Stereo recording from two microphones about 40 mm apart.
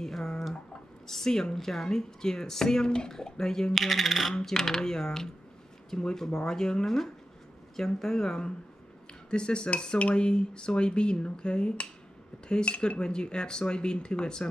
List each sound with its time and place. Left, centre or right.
0.0 s a sound: centre
1.0 s speech: centre
3.7 s speech: centre; by 14.5 s left